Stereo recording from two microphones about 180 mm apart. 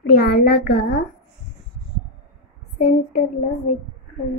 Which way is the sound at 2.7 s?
40° left (ahead or behind).